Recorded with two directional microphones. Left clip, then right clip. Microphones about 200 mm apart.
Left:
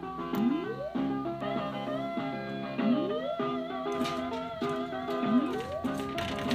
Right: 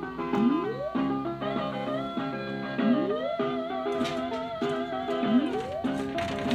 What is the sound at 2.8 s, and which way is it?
Music, 5° right (ahead or behind).